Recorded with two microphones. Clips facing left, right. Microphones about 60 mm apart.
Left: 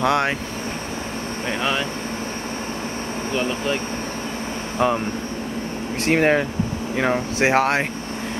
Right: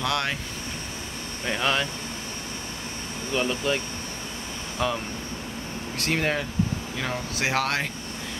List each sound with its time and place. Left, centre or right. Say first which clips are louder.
0.0 s speech: left 8 dB; left
1.5 s speech: left 1 dB; centre
3.3 s speech: left 1 dB; left
4.7 s speech: left 7 dB; left
6.0 s speech: left 8 dB; left